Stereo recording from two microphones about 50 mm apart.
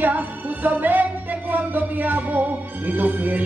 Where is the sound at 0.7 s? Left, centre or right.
Right.